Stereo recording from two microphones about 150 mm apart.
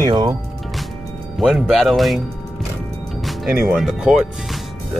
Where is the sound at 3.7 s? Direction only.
5° right (ahead or behind).